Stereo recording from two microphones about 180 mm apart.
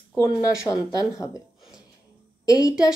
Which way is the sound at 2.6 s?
20° left (ahead or behind).